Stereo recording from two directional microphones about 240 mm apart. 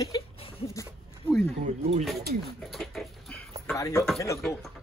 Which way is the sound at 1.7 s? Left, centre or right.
Right.